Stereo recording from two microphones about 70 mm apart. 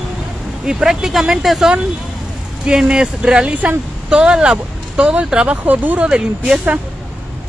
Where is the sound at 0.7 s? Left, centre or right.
Centre.